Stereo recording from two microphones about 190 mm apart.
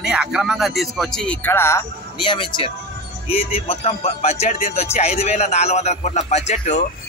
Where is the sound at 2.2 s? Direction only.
25° left (ahead or behind).